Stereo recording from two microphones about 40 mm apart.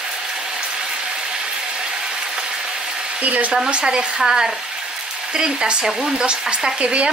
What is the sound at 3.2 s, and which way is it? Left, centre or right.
Speech, right.